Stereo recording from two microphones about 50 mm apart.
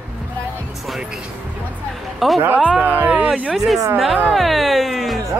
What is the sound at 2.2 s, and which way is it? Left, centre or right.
Speech, centre.